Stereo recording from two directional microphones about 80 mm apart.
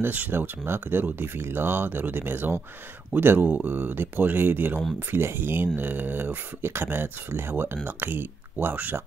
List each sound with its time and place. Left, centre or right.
0.0 s speech: right